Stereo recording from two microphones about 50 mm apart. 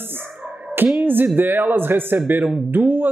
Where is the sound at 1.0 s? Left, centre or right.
Right.